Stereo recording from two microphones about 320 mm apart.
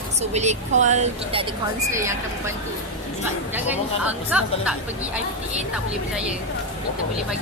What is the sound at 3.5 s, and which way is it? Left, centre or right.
Speech, centre.